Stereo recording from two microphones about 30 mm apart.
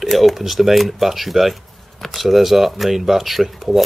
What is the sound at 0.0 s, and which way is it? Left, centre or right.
Speech, centre.